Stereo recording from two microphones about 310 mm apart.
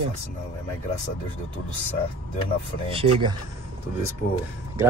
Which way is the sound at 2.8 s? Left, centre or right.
Centre.